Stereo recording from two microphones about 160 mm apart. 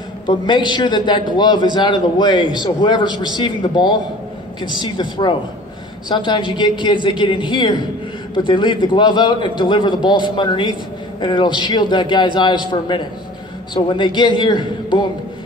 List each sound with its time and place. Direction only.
0.3 s a man's voice: 30° left (ahead or behind)